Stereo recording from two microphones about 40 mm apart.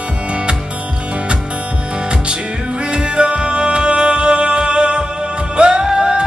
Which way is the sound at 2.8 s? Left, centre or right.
Right.